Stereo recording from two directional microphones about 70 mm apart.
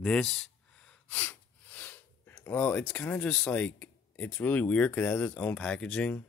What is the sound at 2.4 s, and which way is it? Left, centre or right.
Speech, left.